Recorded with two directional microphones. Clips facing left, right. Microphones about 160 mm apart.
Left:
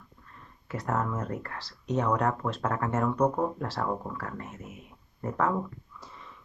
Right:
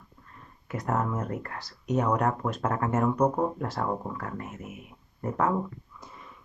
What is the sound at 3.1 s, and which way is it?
Speech, 10° right (ahead or behind).